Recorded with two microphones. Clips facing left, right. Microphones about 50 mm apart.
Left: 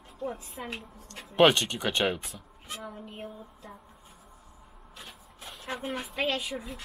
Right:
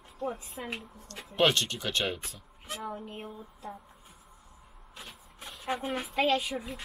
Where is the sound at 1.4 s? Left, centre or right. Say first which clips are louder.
Left 5 dB; centre.